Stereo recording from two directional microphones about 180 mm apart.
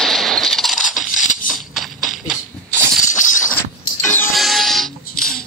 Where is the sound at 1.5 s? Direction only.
Centre (ahead or behind).